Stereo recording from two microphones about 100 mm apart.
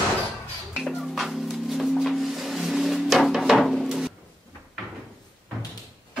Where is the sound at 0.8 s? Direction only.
Centre (ahead or behind).